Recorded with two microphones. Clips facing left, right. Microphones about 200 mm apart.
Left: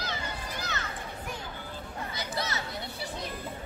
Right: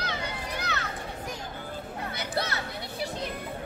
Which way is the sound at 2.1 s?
60° right (ahead or behind).